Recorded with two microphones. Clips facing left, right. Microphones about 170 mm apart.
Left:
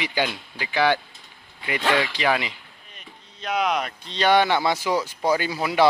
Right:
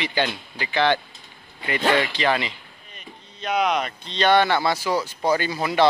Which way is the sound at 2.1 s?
10° left (ahead or behind).